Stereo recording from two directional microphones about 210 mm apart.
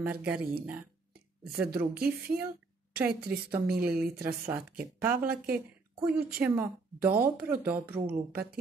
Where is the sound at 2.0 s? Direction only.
45° right (ahead or behind).